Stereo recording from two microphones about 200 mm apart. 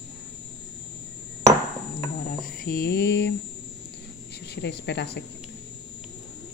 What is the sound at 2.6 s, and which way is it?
Speech, 50° left (ahead or behind).